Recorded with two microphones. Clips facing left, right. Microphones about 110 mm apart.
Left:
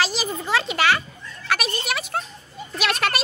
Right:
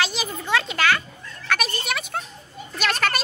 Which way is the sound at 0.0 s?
Centre (ahead or behind).